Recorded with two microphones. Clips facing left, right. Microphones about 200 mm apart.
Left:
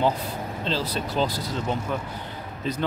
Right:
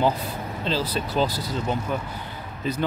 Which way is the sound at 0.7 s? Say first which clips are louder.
Right 2 dB; 5° right (ahead or behind).